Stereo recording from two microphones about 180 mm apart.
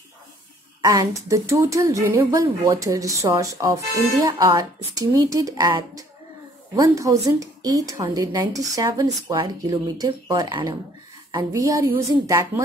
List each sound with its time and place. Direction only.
0.8 s a woman's voice: 20° right (ahead or behind)